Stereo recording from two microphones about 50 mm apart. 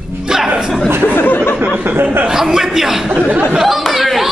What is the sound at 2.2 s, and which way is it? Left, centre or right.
A man's voice, centre.